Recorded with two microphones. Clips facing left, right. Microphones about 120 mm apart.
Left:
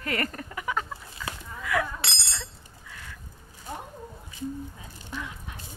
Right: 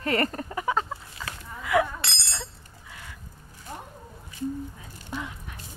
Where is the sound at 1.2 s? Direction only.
35° right (ahead or behind).